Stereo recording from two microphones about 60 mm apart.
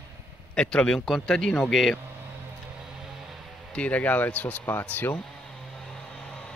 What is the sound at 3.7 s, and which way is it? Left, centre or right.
Speech, left.